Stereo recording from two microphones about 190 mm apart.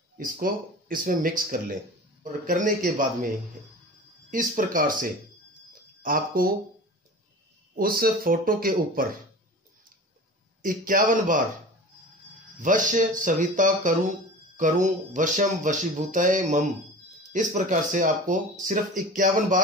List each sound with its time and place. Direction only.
0.2 s speech: 50° right (ahead or behind)
4.3 s speech: 45° right (ahead or behind)
7.7 s speech: 50° right (ahead or behind)
10.6 s speech: 45° right (ahead or behind)
12.5 s speech: 45° right (ahead or behind)